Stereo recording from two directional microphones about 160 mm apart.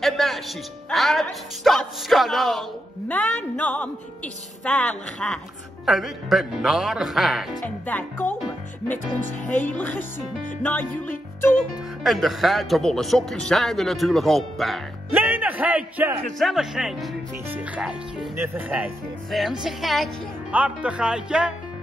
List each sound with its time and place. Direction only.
0.0 s a woman's voice: centre (ahead or behind)
7.6 s a woman's voice: 10° left (ahead or behind)
9.4 s speech: 50° left (ahead or behind)
9.7 s a woman's voice: 10° left (ahead or behind)
12.0 s speech: centre (ahead or behind)
15.0 s speech: 10° right (ahead or behind)
19.6 s speech: centre (ahead or behind)